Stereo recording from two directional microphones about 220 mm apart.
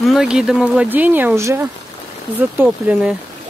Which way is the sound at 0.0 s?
Centre (ahead or behind).